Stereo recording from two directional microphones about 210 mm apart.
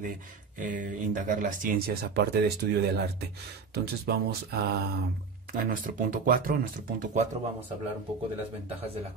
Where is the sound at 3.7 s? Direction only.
50° right (ahead or behind).